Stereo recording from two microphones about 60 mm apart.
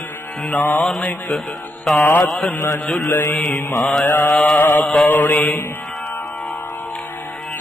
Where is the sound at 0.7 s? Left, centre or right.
Centre.